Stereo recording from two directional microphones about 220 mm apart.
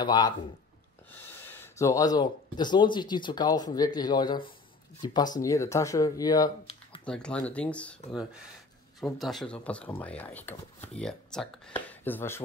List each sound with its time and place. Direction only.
0.0 s speech: 20° left (ahead or behind)
1.3 s speech: 10° left (ahead or behind)
7.1 s speech: 5° left (ahead or behind)
9.0 s speech: centre (ahead or behind)